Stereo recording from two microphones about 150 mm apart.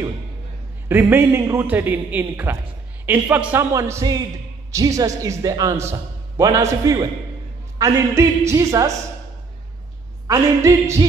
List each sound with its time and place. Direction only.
0.8 s a man's voice: 15° right (ahead or behind)
10.2 s a man's voice: 20° right (ahead or behind)